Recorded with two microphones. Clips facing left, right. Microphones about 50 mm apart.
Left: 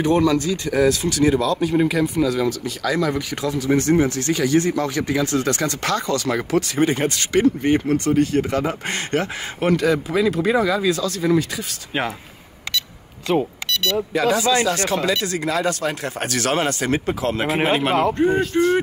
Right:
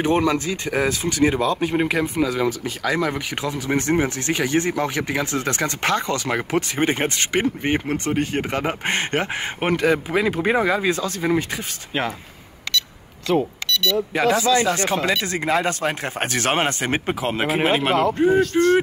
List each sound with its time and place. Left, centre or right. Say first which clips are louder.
0.0 s speech: left 2 dB; right
13.3 s speech: even; centre
14.6 s speech: even; right
17.5 s speech: even; centre